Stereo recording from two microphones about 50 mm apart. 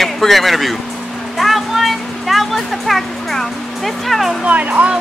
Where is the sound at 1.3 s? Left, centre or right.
Centre.